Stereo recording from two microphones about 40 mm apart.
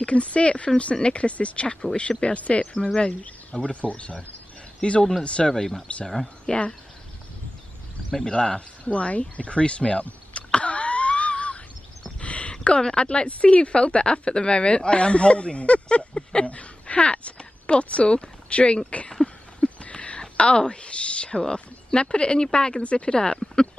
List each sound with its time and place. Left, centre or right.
0.0 s speech: left
5.5 s speech: centre
6.4 s speech: left
8.3 s speech: left
8.8 s speech: left
10.5 s a sound: left
12.6 s speech: left
19.2 s a sound: left
22.0 s speech: left
23.1 s speech: centre